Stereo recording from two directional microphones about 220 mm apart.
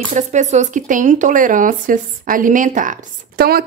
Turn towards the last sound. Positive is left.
turn(degrees=-45)  # may be behind; listen again after turning